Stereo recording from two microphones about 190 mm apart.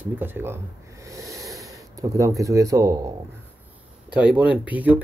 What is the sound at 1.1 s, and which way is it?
Sniff, 15° right (ahead or behind).